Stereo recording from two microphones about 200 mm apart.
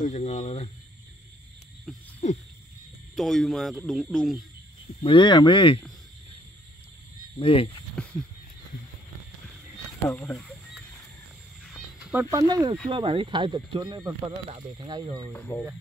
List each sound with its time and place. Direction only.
0.0 s speech: 35° left (ahead or behind)
1.9 s speech: centre (ahead or behind)
3.2 s speech: centre (ahead or behind)
5.0 s speech: 25° left (ahead or behind)
7.3 s speech: 25° left (ahead or behind)
7.9 s a sound: 5° left (ahead or behind)
10.0 s speech: 15° left (ahead or behind)
10.3 s a sound: centre (ahead or behind)
12.1 s speech: 10° right (ahead or behind)
15.3 s speech: 5° left (ahead or behind)